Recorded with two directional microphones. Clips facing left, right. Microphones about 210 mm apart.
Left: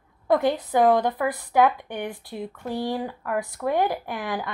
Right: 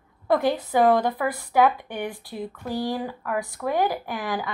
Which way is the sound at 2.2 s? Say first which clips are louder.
Even; 25° left (ahead or behind).